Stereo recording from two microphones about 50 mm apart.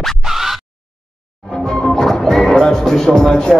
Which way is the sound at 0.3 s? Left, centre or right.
Centre.